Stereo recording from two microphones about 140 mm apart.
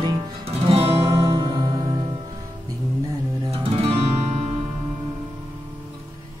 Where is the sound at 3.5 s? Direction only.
45° right (ahead or behind).